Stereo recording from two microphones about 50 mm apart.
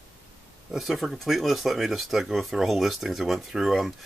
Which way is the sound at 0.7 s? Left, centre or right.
Centre.